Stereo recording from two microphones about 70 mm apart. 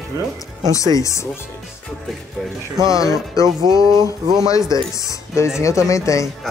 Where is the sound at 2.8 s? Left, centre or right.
Left.